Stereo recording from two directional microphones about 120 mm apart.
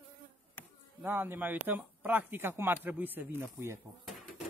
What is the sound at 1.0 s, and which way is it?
Speech, 20° right (ahead or behind).